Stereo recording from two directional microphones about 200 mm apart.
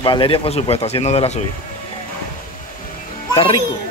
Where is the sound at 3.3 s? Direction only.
30° left (ahead or behind).